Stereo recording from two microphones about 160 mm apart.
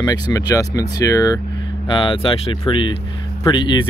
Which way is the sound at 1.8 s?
30° left (ahead or behind).